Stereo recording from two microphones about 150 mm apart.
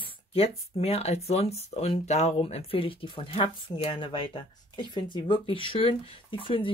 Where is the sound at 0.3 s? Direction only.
40° left (ahead or behind).